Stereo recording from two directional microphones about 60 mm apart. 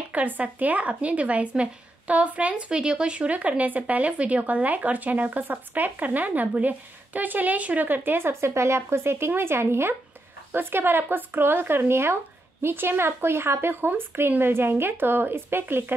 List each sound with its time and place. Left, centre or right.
0.1 s speech: right